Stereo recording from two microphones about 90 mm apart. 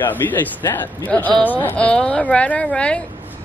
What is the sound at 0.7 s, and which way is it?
A woman's voice, 20° left (ahead or behind).